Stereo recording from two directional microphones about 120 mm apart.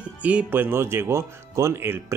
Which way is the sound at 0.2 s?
10° right (ahead or behind).